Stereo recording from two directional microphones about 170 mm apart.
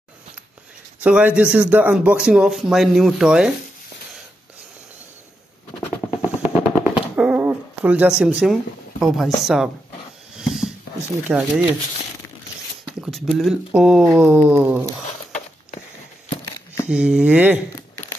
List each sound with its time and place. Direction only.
1.0 s a man's voice: 10° right (ahead or behind)
5.8 s vehicle: 15° left (ahead or behind)
6.2 s vehicle: 10° right (ahead or behind)
7.2 s a sound: 10° right (ahead or behind)
9.0 s a man's voice: centre (ahead or behind)
10.3 s dog: 5° right (ahead or behind)
11.2 s a man's voice: 5° right (ahead or behind)
13.0 s a man's voice: centre (ahead or behind)
16.8 s speech: 5° right (ahead or behind)